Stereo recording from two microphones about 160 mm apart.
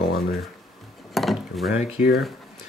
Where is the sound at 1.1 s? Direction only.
Centre (ahead or behind).